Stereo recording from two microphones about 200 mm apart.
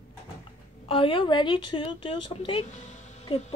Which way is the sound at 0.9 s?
25° left (ahead or behind).